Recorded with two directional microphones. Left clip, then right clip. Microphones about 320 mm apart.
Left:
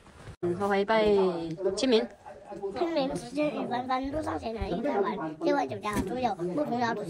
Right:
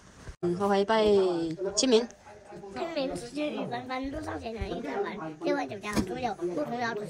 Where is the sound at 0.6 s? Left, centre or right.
Centre.